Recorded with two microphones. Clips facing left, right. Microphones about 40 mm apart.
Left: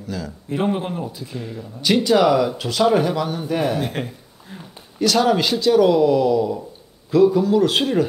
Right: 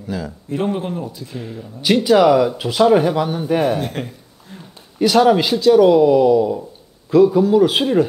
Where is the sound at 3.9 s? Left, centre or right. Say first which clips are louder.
Even; centre.